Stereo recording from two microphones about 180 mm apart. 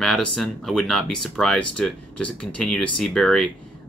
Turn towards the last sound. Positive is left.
turn(degrees=0)  # may be behind; listen again after turning